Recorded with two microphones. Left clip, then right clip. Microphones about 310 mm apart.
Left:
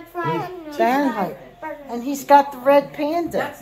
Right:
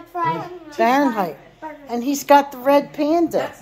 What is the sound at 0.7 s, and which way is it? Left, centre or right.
A woman's voice, centre.